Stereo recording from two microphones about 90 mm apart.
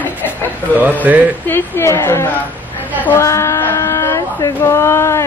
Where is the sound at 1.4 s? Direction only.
25° left (ahead or behind).